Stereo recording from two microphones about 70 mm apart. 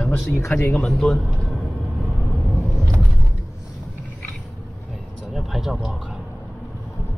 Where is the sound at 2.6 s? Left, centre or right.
Centre.